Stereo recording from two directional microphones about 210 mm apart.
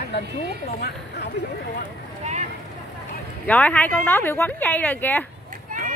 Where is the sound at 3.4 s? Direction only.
5° left (ahead or behind).